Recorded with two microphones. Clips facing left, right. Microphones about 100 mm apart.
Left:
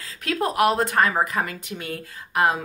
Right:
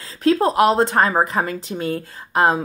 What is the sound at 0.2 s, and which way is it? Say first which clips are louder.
A woman's voice: right 6 dB; 30° right (ahead or behind).